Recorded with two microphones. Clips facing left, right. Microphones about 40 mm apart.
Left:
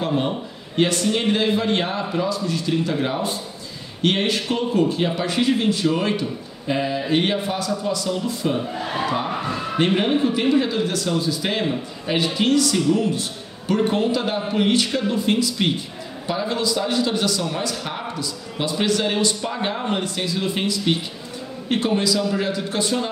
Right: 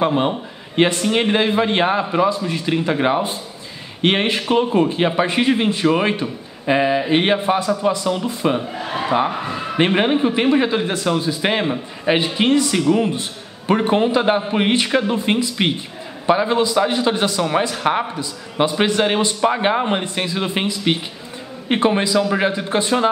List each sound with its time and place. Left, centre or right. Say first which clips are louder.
0.0 s a man's voice: right 5 dB; right
8.7 s a man's voice: right 4 dB; centre
9.8 s a man's voice: right 3 dB; right